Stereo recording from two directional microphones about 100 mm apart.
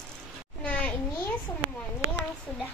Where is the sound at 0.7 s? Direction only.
15° left (ahead or behind).